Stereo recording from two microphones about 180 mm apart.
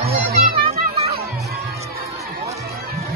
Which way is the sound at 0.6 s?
35° right (ahead or behind).